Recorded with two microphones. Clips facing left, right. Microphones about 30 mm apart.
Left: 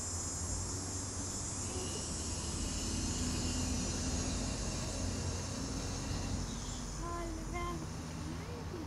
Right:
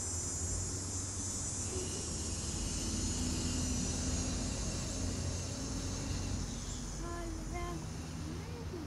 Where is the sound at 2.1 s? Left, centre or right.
Centre.